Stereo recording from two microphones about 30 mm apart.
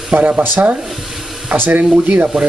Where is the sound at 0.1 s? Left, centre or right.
Right.